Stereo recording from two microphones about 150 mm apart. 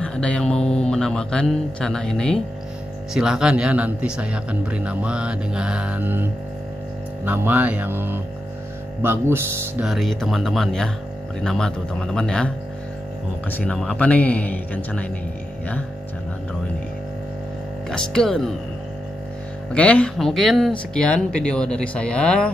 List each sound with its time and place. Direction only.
0.0 s a man's voice: 5° left (ahead or behind); by 6.2 s 10° right (ahead or behind)
7.2 s speech: 10° right (ahead or behind)
9.8 s speech: centre (ahead or behind)
13.5 s speech: 10° left (ahead or behind)
17.8 s speech: 5° left (ahead or behind)
19.7 s speech: 10° left (ahead or behind)